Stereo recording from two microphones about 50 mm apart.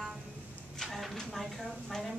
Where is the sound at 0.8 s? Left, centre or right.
Centre.